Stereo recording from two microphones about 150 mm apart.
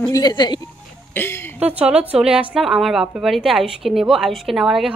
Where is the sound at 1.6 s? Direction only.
10° right (ahead or behind).